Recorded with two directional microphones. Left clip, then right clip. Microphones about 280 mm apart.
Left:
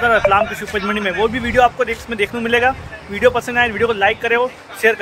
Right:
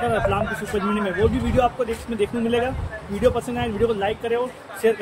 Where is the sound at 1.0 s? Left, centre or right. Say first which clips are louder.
Left 4 dB; left.